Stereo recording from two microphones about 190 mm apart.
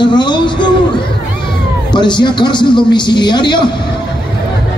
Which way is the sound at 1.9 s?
25° left (ahead or behind).